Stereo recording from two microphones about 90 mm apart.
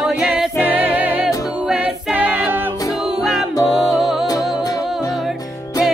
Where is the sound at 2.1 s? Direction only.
15° right (ahead or behind).